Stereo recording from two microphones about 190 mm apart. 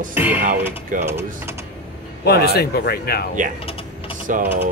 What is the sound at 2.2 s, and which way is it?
Speech, 55° left (ahead or behind).